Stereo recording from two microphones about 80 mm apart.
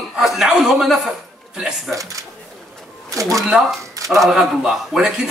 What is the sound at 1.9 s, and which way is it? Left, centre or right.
Speech, right.